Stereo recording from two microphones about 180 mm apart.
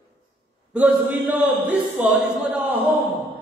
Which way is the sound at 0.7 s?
10° right (ahead or behind).